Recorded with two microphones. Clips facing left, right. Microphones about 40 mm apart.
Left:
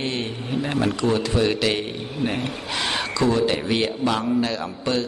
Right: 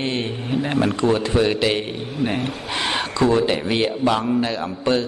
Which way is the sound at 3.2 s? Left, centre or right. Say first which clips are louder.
Right 3 dB; right.